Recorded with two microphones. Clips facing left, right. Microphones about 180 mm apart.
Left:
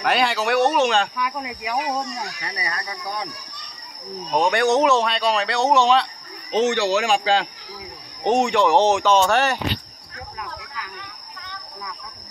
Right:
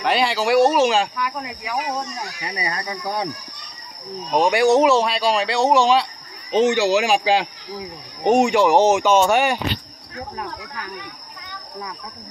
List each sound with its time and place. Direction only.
0.0 s speech: centre (ahead or behind)
1.1 s speech: 15° left (ahead or behind)
2.4 s speech: 20° right (ahead or behind)
4.3 s speech: 5° right (ahead or behind)
8.3 s speech: centre (ahead or behind)
9.0 s speech: 15° right (ahead or behind)